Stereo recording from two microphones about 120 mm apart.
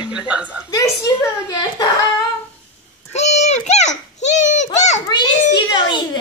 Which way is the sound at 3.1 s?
70° left (ahead or behind).